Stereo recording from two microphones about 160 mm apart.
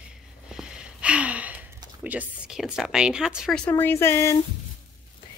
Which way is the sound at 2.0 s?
10° right (ahead or behind).